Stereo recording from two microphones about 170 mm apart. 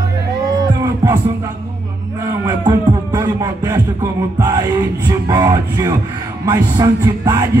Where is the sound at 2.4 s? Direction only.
20° right (ahead or behind).